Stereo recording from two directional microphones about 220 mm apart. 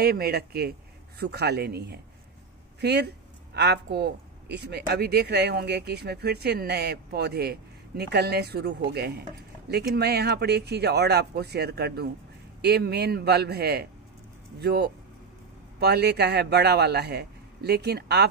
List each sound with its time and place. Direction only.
0.0 s speech: 45° right (ahead or behind)